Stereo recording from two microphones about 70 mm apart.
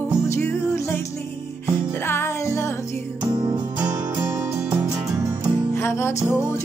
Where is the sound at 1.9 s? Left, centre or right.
Left.